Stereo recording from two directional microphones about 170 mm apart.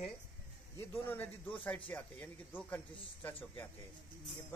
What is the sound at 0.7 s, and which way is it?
A man's voice, 10° left (ahead or behind).